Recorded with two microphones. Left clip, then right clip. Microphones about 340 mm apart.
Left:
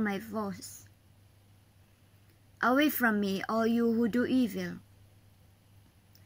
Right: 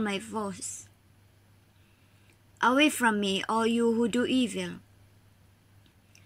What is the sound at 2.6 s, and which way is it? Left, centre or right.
A woman's voice, centre.